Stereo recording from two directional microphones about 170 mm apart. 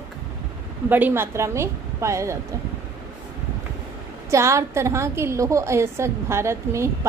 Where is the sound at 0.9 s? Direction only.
10° right (ahead or behind).